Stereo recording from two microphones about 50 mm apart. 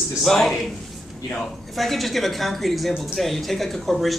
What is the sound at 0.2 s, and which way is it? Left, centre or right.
Speech, centre.